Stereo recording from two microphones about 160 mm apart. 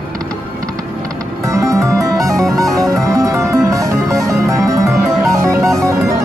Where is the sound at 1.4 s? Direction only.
20° right (ahead or behind).